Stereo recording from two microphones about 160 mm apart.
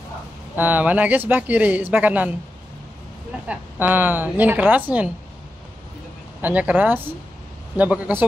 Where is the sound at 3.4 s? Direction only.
10° right (ahead or behind).